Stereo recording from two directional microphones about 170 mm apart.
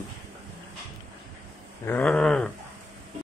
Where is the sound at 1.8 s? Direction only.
10° left (ahead or behind).